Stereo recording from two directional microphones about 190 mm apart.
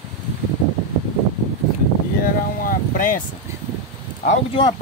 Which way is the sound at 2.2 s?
45° left (ahead or behind).